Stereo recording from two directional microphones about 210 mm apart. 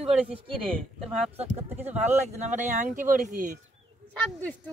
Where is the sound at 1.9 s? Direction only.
30° right (ahead or behind).